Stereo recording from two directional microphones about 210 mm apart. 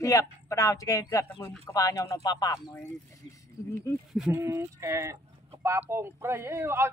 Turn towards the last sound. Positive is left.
turn(degrees=-10)  # may be behind; listen again after turning